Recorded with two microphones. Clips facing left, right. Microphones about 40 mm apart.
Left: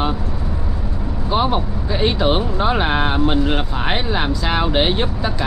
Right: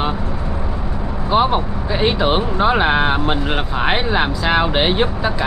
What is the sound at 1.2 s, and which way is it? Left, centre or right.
Speech, centre.